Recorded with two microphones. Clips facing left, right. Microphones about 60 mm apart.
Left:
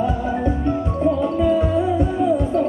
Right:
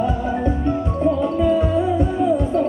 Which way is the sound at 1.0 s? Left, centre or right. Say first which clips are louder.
Even; centre.